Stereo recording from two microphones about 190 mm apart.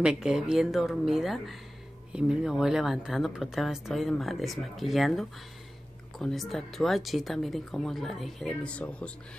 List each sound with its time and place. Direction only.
0.0 s a woman's voice: 5° right (ahead or behind)